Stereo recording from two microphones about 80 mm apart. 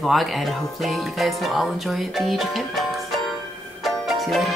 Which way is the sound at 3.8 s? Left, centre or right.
Centre.